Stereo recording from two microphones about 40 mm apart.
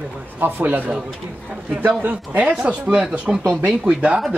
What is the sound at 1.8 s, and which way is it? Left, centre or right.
Speech, right.